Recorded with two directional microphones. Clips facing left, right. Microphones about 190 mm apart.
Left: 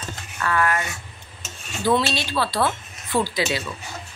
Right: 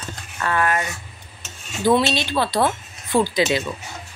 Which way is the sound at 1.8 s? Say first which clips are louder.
Right 3 dB; 20° right (ahead or behind).